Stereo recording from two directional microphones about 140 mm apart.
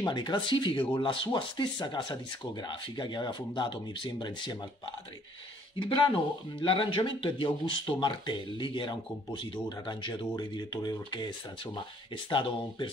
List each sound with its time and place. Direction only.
0.0 s speech: 30° left (ahead or behind)
5.8 s speech: 35° left (ahead or behind)